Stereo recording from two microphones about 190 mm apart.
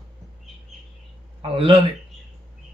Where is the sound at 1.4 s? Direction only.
30° right (ahead or behind).